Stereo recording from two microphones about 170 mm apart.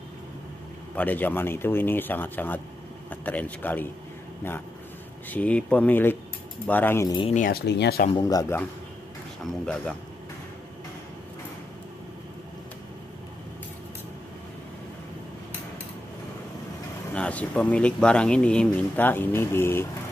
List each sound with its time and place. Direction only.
0.9 s speech: 10° left (ahead or behind)
5.3 s speech: 10° left (ahead or behind)
7.1 s speech: 30° left (ahead or behind)
7.3 s speech: 55° left (ahead or behind)
7.6 s speech: 90° left
8.1 s speech: 20° left (ahead or behind)
9.4 s speech: 5° left (ahead or behind)
17.1 s speech: 10° left (ahead or behind)